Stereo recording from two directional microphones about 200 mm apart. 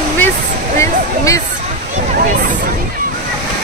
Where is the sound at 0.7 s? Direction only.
15° left (ahead or behind).